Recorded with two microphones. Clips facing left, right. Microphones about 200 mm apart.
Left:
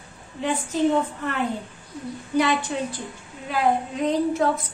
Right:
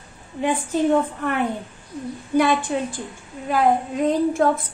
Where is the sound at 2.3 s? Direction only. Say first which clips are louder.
Right 3 dB; 50° right (ahead or behind).